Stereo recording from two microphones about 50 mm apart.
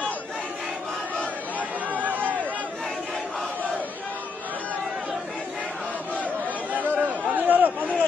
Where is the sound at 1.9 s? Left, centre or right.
Right.